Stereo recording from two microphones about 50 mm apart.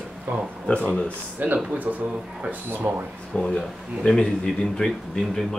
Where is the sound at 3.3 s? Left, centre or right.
Centre.